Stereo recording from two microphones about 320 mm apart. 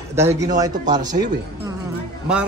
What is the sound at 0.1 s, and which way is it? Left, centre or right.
A woman's voice, centre.